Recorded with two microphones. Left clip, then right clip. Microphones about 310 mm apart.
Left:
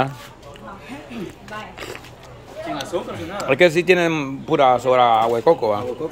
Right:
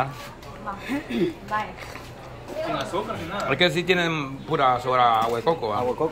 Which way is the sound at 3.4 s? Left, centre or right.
Centre.